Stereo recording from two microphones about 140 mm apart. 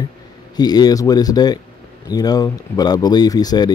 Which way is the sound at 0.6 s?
30° left (ahead or behind).